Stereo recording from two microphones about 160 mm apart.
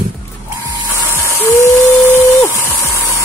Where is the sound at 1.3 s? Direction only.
20° left (ahead or behind).